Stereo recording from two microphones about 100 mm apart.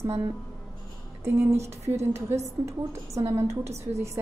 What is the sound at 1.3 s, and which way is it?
A woman's voice, 25° right (ahead or behind).